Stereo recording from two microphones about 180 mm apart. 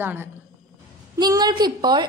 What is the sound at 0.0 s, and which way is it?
A woman's voice, 10° right (ahead or behind).